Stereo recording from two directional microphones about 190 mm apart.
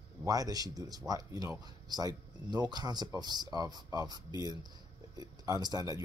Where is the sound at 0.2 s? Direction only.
20° right (ahead or behind).